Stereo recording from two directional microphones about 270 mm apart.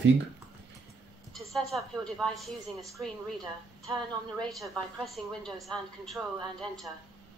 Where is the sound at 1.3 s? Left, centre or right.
Centre.